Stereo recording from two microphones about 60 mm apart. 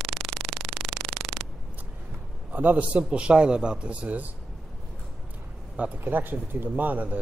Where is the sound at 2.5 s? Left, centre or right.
Right.